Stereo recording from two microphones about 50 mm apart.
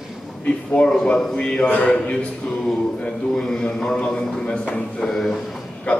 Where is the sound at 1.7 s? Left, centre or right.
Left.